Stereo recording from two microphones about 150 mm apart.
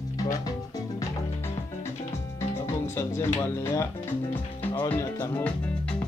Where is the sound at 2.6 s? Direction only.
20° left (ahead or behind).